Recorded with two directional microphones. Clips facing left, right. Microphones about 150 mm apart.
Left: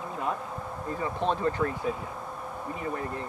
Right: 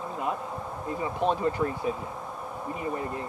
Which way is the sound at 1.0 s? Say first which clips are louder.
Right 2 dB; 15° right (ahead or behind).